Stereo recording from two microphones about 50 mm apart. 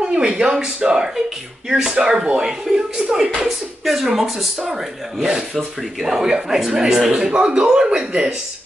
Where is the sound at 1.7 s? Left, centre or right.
Centre.